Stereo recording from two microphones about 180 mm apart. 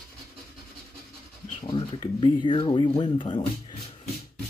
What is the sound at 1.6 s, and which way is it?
Speech, 25° left (ahead or behind).